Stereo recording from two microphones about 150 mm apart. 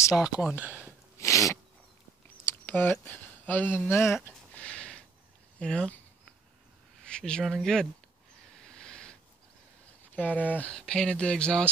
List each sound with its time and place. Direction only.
0.1 s speech: 5° right (ahead or behind)
1.2 s sneeze: 20° left (ahead or behind)
2.4 s speech: 15° left (ahead or behind)
4.1 s a sound: 5° left (ahead or behind)
5.6 s speech: 5° left (ahead or behind)
7.0 s speech: 5° left (ahead or behind)
8.6 s a sound: 5° left (ahead or behind)
10.1 s speech: 10° left (ahead or behind)